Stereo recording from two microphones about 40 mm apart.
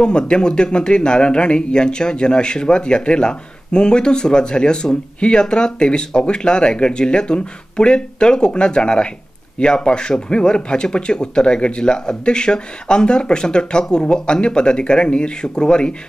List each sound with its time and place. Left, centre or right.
0.0 s speech: left